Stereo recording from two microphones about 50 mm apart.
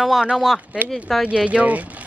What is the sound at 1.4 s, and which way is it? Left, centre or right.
Speech, right.